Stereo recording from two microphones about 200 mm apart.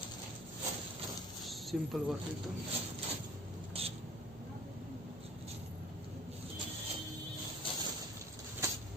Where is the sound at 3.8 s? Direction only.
30° right (ahead or behind).